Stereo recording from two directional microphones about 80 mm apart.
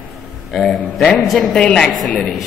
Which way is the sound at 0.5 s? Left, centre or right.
Centre.